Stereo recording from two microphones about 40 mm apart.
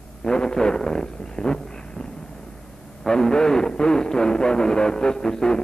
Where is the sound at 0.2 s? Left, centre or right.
Centre.